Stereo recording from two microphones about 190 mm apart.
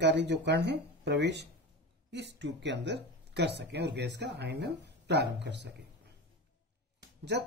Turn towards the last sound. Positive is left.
turn(degrees=-65)  # may be behind; listen again after turning